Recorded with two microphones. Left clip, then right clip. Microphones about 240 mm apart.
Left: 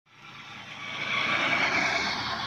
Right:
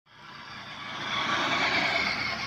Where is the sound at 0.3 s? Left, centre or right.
Left.